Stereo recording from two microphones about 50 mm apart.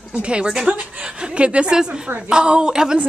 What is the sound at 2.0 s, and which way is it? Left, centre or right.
Speech, right.